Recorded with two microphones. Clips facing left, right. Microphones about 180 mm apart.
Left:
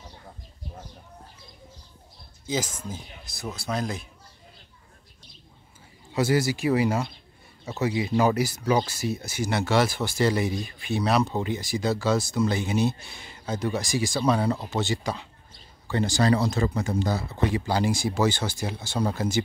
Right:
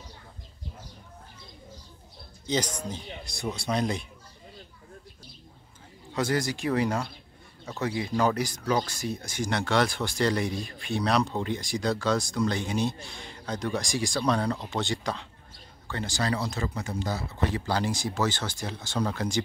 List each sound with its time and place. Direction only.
2.4 s speech: 5° left (ahead or behind)
6.1 s speech: 5° left (ahead or behind)
16.2 s speech: 40° left (ahead or behind)
17.6 s speech: 10° left (ahead or behind)